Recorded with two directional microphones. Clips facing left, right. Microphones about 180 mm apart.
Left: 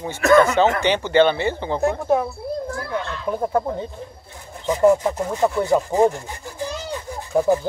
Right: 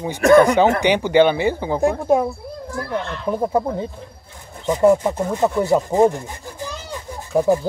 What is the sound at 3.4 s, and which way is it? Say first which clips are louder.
Speech: right 2 dB; 15° right (ahead or behind).